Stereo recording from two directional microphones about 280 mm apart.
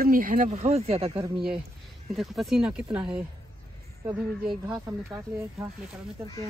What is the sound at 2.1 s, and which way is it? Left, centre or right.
Speech, centre.